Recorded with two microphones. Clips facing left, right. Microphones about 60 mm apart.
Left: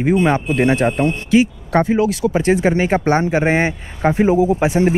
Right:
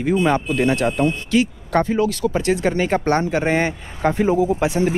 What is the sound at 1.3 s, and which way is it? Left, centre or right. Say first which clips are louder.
Speech: left 4 dB; left.